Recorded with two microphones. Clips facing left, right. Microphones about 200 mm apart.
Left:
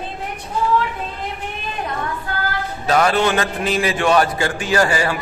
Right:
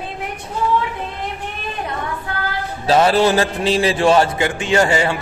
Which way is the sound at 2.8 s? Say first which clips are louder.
Right 3 dB; 30° right (ahead or behind).